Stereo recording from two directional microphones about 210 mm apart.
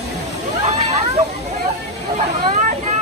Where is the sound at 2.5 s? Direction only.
35° right (ahead or behind).